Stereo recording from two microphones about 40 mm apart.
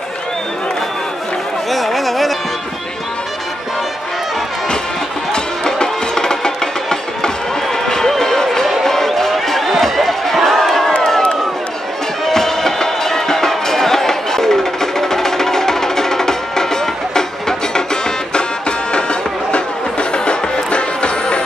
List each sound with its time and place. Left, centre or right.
1.7 s carnatic music: centre
5.3 s music: centre
8.8 s a sound: centre
11.0 s crowd: centre
12.3 s music: centre; by 21.4 s left